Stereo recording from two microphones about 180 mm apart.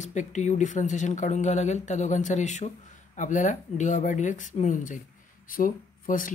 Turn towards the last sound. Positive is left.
turn(degrees=50)  # may be behind; listen again after turning